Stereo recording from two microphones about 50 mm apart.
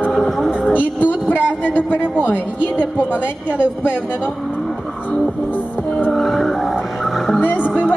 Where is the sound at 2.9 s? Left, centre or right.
Left.